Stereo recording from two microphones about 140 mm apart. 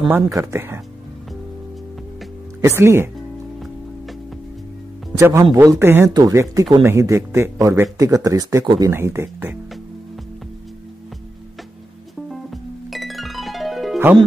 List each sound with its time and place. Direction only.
0.1 s speech: 20° right (ahead or behind)
2.6 s speech: 20° right (ahead or behind)
3.5 s music: centre (ahead or behind)
5.1 s speech: 20° right (ahead or behind)
12.3 s music: centre (ahead or behind)